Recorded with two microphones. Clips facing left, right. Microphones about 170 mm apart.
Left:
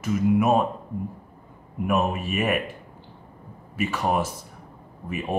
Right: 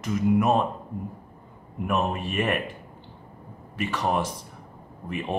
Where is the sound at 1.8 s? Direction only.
5° left (ahead or behind).